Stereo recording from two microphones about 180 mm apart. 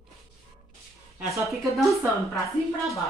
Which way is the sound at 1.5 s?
Centre (ahead or behind).